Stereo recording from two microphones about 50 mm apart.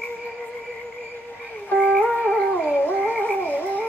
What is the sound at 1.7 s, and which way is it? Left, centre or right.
Music, left.